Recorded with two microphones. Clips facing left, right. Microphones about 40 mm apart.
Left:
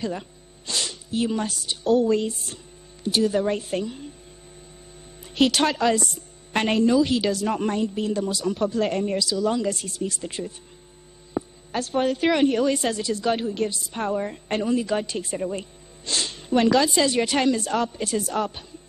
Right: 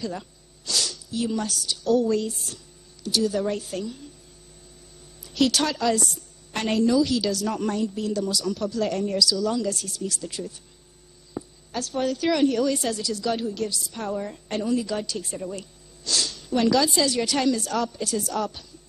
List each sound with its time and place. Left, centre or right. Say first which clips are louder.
0.0 s speech: left 3 dB; left
5.2 s a woman's voice: left 2 dB; left